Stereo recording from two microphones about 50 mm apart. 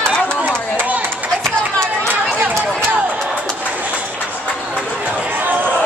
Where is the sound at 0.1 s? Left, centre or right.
Centre.